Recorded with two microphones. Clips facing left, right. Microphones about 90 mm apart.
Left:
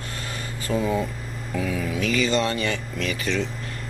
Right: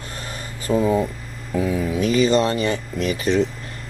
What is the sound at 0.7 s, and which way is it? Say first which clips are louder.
Speech: right 5 dB; 25° right (ahead or behind).